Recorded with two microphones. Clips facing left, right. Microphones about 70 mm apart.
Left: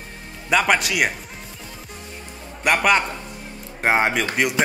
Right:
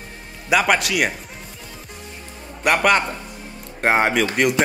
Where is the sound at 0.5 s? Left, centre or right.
Centre.